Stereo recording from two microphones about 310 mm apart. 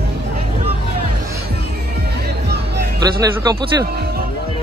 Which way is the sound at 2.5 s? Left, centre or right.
Right.